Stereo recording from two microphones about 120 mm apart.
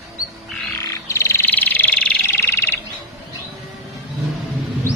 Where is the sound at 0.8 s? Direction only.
25° left (ahead or behind).